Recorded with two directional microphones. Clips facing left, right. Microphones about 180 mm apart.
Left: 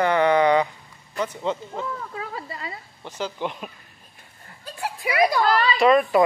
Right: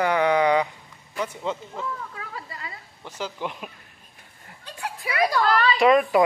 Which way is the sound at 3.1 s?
5° right (ahead or behind).